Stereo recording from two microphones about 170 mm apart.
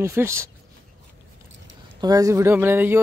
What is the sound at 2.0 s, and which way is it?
Speech, 20° right (ahead or behind).